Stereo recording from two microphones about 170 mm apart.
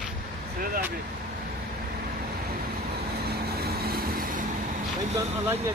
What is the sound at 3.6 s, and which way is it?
Vehicle, 65° right (ahead or behind).